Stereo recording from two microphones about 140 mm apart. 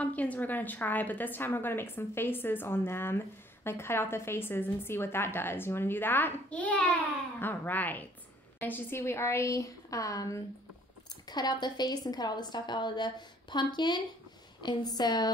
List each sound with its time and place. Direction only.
0.0 s a woman's voice: 10° left (ahead or behind); by 15.3 s 30° left (ahead or behind)